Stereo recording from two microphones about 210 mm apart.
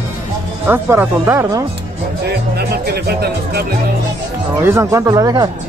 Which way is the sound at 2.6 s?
50° right (ahead or behind).